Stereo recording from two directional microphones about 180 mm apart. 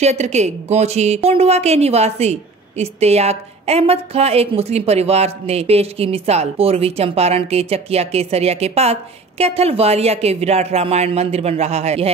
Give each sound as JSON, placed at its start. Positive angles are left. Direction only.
{"t": 0.0, "sound": "a woman's voice", "side_deg": -40}